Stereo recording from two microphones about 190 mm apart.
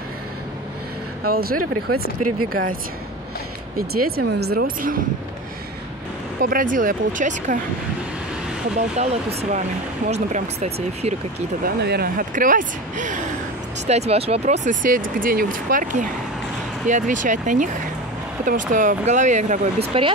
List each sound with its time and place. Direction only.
1.2 s speech: 50° right (ahead or behind)
3.7 s speech: 55° right (ahead or behind)
6.4 s speech: 45° right (ahead or behind)
8.7 s speech: 35° right (ahead or behind)
11.6 s speech: 55° right (ahead or behind); by 19.7 s 40° right (ahead or behind)
19.9 s speech: 25° right (ahead or behind)